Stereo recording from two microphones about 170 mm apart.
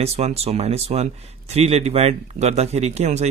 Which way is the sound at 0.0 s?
40° right (ahead or behind).